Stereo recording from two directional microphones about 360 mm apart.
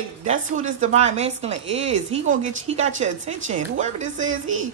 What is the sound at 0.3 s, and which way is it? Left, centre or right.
A woman's voice, centre.